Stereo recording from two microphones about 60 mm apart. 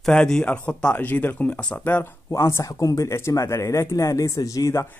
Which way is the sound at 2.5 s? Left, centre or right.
Left.